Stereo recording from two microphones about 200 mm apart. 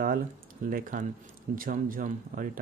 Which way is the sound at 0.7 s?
45° right (ahead or behind).